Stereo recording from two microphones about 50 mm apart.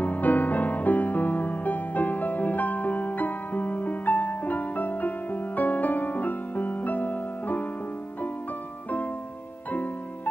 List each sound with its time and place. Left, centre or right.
0.0 s music: left